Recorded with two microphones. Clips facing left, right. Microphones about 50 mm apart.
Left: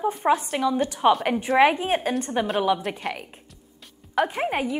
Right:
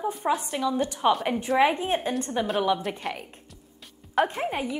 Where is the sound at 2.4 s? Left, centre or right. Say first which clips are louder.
Even; centre.